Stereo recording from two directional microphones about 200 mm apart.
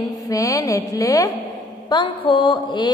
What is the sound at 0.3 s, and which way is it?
A woman's voice, 15° left (ahead or behind).